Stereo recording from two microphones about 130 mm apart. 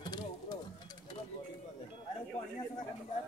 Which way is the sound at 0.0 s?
35° left (ahead or behind).